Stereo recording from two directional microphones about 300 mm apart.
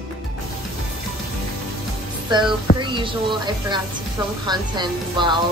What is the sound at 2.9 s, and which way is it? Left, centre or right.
Speech, centre.